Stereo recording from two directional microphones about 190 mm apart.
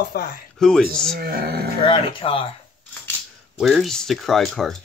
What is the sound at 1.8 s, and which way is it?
Speech, 30° left (ahead or behind).